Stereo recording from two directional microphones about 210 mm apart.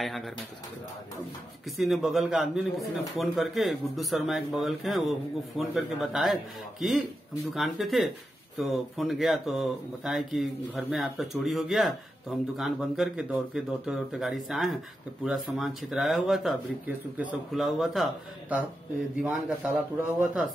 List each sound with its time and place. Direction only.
1.8 s speech: centre (ahead or behind)